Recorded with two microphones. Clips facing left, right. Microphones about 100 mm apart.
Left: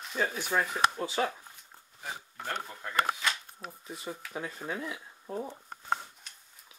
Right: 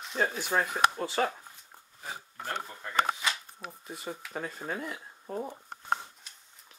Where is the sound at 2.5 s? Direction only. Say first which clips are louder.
Right 1 dB; centre (ahead or behind).